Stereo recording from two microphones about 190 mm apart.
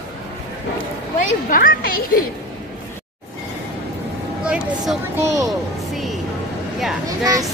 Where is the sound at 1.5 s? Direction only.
50° left (ahead or behind).